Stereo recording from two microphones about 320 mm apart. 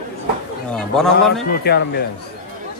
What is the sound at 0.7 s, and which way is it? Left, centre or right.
Speech, centre.